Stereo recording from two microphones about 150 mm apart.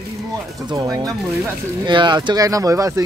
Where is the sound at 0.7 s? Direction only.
25° right (ahead or behind).